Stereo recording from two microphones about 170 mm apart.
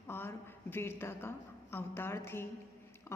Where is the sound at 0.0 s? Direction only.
15° left (ahead or behind).